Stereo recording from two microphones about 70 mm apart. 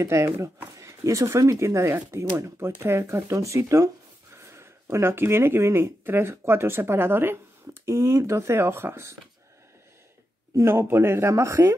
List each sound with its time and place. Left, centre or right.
0.0 s speech: right
7.8 s speech: right
10.5 s speech: right